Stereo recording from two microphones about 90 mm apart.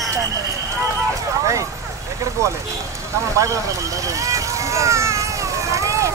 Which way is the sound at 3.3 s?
35° right (ahead or behind).